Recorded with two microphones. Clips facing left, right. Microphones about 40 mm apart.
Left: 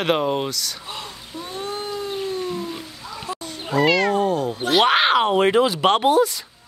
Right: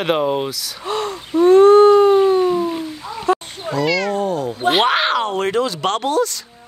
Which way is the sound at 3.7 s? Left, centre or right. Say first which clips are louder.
Left 1 dB; centre.